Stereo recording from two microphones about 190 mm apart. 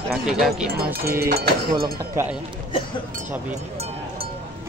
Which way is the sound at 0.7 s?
55° right (ahead or behind).